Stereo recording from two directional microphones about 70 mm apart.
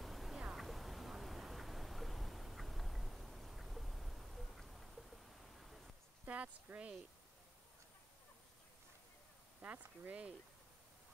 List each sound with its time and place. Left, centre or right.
0.0 s a sound: centre
6.2 s speech: centre
9.6 s speech: right